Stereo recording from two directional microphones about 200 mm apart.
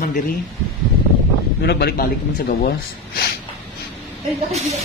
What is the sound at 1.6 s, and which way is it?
Speech, 55° left (ahead or behind).